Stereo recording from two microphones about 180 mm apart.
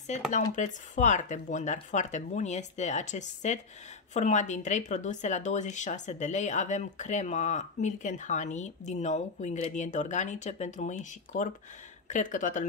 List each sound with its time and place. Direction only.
0.6 s speech: 40° left (ahead or behind)